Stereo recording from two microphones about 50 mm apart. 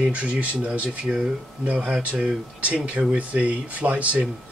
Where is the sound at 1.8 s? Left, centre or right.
Right.